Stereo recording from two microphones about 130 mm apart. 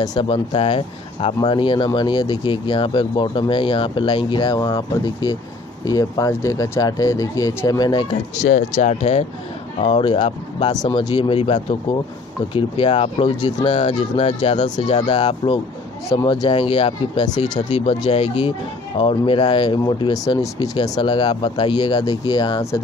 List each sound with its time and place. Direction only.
0.2 s speech: 40° left (ahead or behind)
8.5 s speech: 90° left
9.8 s speech: 50° left (ahead or behind)
13.4 s speech: 30° left (ahead or behind)
13.7 s speech: 50° left (ahead or behind); by 22.6 s 35° left (ahead or behind)